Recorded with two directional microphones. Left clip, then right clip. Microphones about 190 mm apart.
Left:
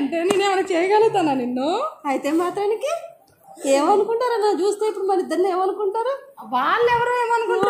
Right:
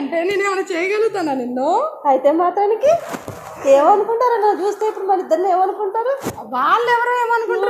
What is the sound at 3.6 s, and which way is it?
A woman's voice, 65° left (ahead or behind).